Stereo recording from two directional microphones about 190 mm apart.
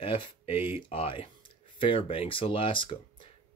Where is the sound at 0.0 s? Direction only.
30° left (ahead or behind).